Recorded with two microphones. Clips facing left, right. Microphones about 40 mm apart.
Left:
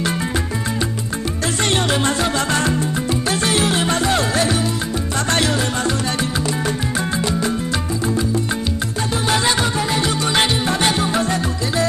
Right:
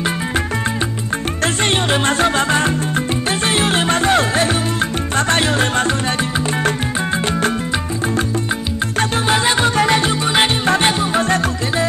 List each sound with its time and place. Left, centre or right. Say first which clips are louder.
1.6 s music: even; right
5.6 s music: right 4 dB; right
9.2 s music: right 1 dB; right
9.8 s music: right 6 dB; right
10.4 s music: right 3 dB; right
10.8 s music: right 2 dB; right
11.1 s music: right 3 dB; right